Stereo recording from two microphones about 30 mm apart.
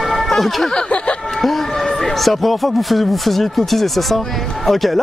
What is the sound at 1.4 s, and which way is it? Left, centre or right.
Speech, centre.